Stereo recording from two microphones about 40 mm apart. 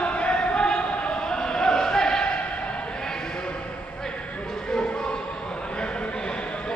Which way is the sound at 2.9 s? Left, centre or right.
Centre.